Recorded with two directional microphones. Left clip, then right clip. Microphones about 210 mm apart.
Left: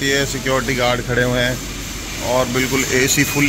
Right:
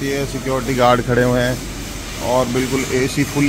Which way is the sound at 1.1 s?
15° right (ahead or behind).